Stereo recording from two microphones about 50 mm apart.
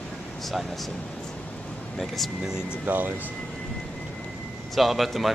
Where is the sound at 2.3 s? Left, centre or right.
Centre.